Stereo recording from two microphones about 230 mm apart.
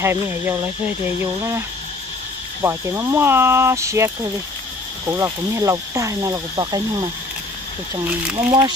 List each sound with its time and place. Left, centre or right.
0.0 s speech: centre
2.6 s speech: centre